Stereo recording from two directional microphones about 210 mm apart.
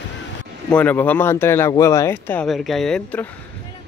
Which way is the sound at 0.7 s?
10° left (ahead or behind).